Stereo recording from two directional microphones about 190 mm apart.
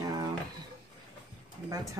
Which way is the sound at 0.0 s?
20° right (ahead or behind).